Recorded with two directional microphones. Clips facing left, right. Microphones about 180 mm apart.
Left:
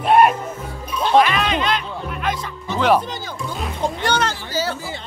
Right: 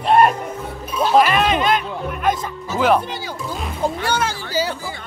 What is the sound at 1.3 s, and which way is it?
Speech, 50° right (ahead or behind).